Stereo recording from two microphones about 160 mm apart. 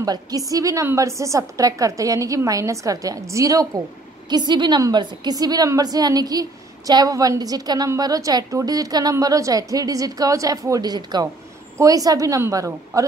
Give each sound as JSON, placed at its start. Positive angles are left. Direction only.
{"t": 0.0, "sound": "a woman's voice", "side_deg": -25}